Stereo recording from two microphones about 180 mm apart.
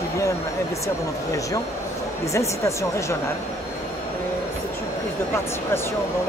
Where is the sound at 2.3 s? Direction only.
15° left (ahead or behind).